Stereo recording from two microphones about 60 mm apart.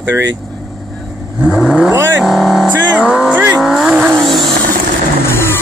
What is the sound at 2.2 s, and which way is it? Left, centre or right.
Speech, centre.